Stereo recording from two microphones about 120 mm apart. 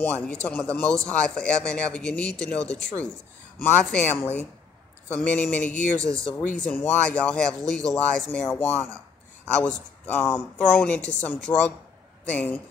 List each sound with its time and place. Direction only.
0.0 s speech: 15° left (ahead or behind)